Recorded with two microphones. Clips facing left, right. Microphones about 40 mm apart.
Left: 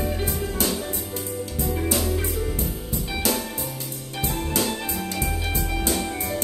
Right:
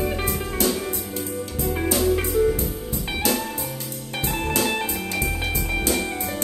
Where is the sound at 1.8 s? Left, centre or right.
Right.